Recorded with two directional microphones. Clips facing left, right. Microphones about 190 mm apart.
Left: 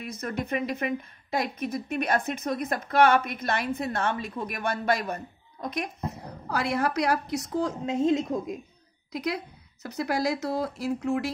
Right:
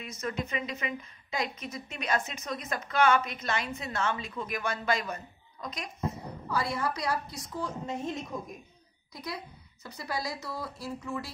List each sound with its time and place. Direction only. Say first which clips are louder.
0.0 s speech: left 3 dB; 55° left (ahead or behind)
6.7 s a woman's voice: left 6 dB; 75° left (ahead or behind)
9.8 s speech: left 9 dB; 80° left